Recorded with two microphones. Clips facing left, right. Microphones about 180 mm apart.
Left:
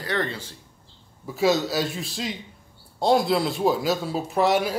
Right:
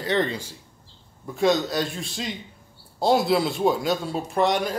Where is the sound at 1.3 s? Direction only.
5° left (ahead or behind).